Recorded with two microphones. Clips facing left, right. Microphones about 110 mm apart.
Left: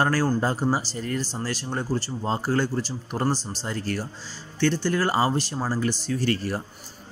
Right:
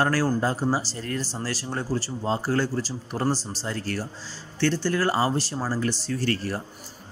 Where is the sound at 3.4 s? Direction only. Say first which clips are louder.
Even; 35° right (ahead or behind).